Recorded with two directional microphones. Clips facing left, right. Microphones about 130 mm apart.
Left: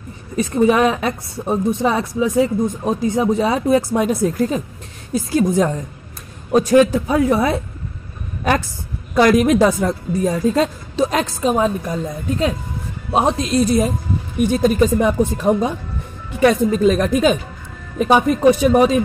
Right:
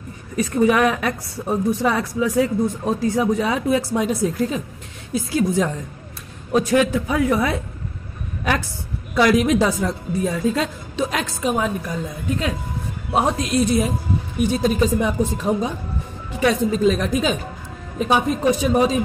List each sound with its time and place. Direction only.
0.4 s a woman's voice: 25° left (ahead or behind)
3.9 s a woman's voice: 50° left (ahead or behind); by 7.6 s 35° left (ahead or behind)
9.1 s a woman's voice: 45° left (ahead or behind)
13.1 s a woman's voice: 20° left (ahead or behind)
13.6 s a woman's voice: 40° left (ahead or behind)
14.5 s speech: 50° left (ahead or behind)